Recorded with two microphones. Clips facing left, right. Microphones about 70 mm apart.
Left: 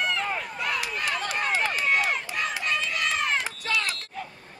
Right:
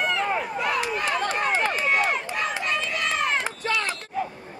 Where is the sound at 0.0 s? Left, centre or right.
Centre.